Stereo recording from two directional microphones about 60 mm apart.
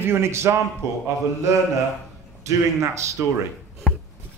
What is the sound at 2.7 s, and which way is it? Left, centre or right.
Speech, right.